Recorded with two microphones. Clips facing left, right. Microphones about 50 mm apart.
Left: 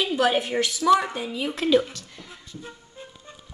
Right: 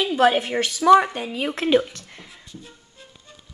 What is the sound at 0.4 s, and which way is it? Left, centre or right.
Speech, right.